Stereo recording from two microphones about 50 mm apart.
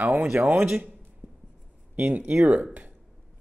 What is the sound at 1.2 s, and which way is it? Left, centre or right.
Writing, centre.